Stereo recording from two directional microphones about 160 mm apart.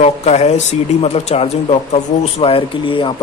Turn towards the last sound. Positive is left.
turn(degrees=30)  # may be behind; listen again after turning